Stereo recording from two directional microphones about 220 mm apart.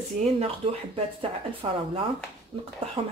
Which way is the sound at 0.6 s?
25° right (ahead or behind).